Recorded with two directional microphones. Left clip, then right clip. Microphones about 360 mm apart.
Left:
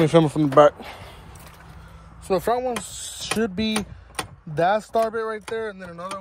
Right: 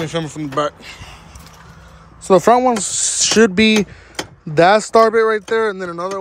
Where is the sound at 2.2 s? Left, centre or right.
Right.